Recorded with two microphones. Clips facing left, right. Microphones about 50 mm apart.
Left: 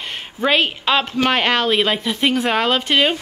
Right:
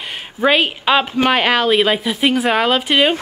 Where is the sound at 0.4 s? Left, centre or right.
Centre.